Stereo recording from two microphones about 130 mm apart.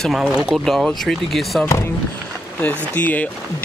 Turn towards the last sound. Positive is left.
turn(degrees=10)  # may be behind; listen again after turning